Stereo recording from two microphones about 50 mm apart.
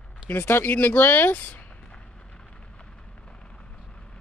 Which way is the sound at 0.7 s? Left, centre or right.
Left.